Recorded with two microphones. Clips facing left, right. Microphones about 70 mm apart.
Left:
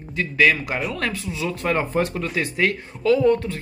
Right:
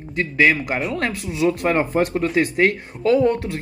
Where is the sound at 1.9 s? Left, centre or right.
Centre.